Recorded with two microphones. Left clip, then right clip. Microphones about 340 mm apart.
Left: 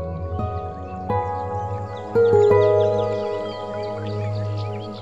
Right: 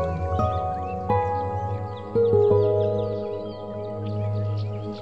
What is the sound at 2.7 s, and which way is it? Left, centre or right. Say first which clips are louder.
Music: left 5 dB; left.